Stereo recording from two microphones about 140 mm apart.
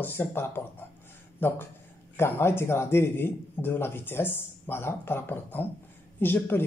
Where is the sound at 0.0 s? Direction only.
15° left (ahead or behind).